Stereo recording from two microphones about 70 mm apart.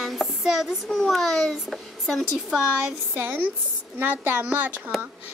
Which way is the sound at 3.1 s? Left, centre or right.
Right.